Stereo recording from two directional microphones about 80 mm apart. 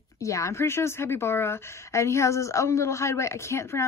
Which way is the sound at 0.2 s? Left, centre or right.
Left.